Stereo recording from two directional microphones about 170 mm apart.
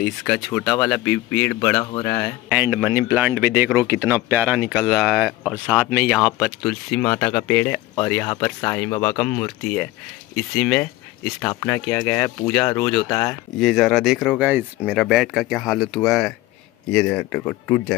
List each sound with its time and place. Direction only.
0.0 s speech: 5° left (ahead or behind)
2.5 s speech: 10° right (ahead or behind)
13.1 s speech: 15° left (ahead or behind)
13.6 s speech: centre (ahead or behind)